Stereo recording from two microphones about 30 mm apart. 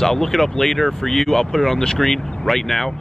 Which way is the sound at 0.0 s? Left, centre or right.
Centre.